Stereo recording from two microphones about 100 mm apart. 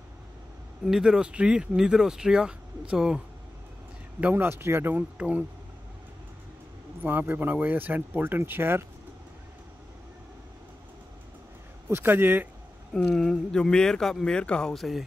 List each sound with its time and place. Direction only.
0.8 s speech: 5° right (ahead or behind)
4.2 s speech: 20° right (ahead or behind)
7.0 s speech: 20° right (ahead or behind)
11.9 s speech: 20° right (ahead or behind)
12.9 s speech: 5° left (ahead or behind)